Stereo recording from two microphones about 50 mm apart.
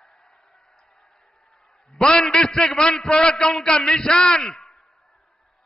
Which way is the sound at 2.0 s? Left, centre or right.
Centre.